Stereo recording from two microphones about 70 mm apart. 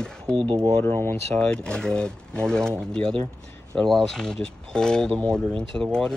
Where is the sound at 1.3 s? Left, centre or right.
Centre.